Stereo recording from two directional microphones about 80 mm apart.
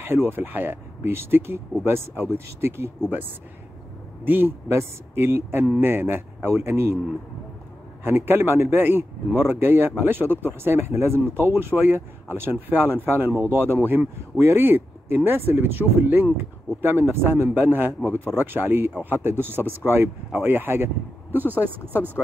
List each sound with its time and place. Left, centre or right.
0.0 s a man's voice: right
8.0 s a man's voice: right